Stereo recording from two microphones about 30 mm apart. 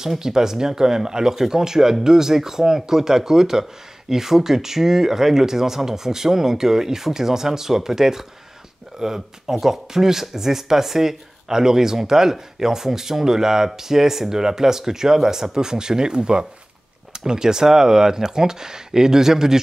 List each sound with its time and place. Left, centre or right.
0.2 s speech: centre